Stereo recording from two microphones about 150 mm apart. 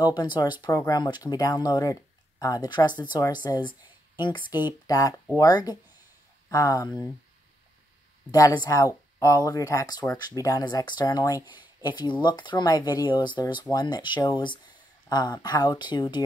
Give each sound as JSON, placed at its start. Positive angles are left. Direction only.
{"t": 0.0, "sound": "speech", "side_deg": 30}
{"t": 8.3, "sound": "speech", "side_deg": 25}